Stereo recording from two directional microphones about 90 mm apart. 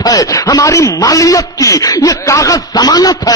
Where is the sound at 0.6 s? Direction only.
35° left (ahead or behind).